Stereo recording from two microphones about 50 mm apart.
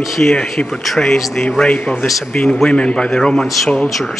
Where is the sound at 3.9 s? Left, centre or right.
Centre.